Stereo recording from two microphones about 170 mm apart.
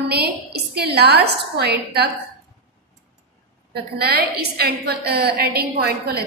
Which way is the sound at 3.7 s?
65° right (ahead or behind).